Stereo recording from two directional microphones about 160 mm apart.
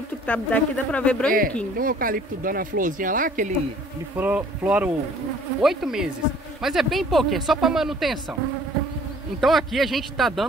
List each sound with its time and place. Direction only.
0.3 s speech: 10° left (ahead or behind)
1.8 s speech: 60° right (ahead or behind)
4.2 s speech: 10° right (ahead or behind)
9.4 s speech: centre (ahead or behind)